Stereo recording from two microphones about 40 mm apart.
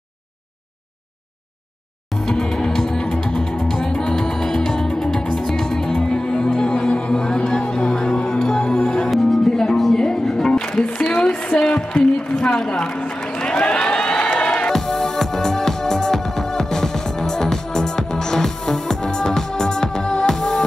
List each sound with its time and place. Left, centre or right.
2.1 s music: centre
11.1 s a sound: left
13.2 s crowd: centre
14.7 s music: centre